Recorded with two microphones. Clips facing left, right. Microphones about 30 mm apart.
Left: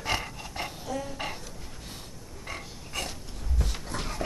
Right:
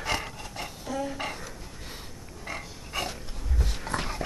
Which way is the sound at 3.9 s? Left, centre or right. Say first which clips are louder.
Right 5 dB; right.